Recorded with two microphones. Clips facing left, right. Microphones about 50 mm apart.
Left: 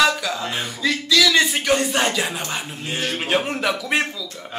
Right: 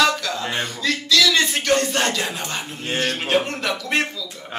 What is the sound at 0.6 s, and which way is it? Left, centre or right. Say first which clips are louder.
Speech: even; centre.